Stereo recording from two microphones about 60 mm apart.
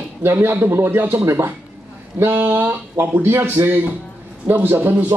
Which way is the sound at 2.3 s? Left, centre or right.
Right.